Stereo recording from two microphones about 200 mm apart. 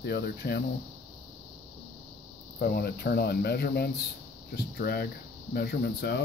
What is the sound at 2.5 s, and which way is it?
Speech, 50° left (ahead or behind).